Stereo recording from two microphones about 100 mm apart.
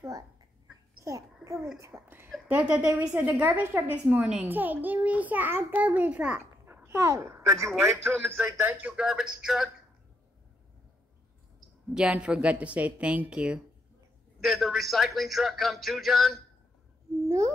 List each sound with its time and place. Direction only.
1.0 s babbling: 30° right (ahead or behind)
1.8 s a child's voice: 25° right (ahead or behind)
2.7 s a woman's voice: 10° right (ahead or behind)
8.9 s a woman's voice: 10° right (ahead or behind)
11.9 s a woman's voice: 10° right (ahead or behind)